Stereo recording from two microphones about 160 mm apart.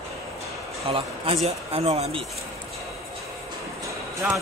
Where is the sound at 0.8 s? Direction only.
35° right (ahead or behind).